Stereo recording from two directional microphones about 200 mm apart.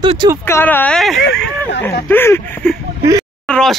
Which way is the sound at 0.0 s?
20° right (ahead or behind).